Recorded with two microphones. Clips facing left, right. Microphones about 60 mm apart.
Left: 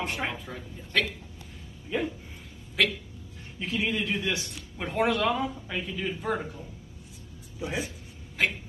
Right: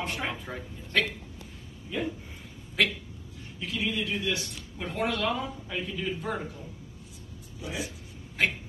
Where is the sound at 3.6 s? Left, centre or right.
Left.